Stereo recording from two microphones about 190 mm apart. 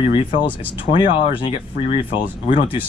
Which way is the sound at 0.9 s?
25° left (ahead or behind).